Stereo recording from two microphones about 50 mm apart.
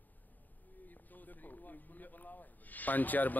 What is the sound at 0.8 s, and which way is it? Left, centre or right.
A man's voice, left.